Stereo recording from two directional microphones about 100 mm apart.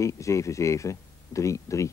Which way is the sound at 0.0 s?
30° left (ahead or behind).